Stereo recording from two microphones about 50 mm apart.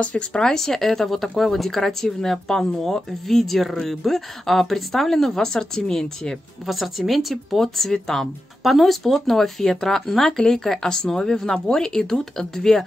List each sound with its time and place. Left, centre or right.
0.0 s speech: left
0.4 s a woman's voice: centre
6.7 s speech: centre